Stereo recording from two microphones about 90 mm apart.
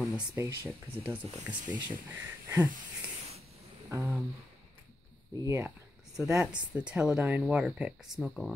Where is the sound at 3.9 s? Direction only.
35° right (ahead or behind).